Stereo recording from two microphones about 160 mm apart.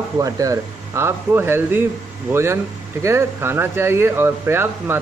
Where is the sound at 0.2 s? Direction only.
20° right (ahead or behind).